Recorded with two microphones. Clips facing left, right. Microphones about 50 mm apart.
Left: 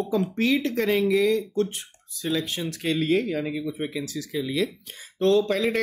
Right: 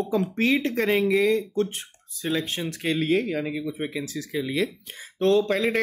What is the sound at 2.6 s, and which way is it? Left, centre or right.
Speech, centre.